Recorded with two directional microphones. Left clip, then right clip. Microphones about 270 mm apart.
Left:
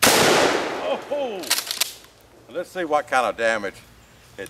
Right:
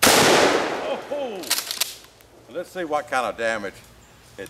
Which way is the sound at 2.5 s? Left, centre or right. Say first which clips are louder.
Left 3 dB; centre.